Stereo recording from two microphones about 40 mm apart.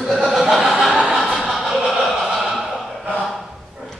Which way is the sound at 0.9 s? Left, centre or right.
Centre.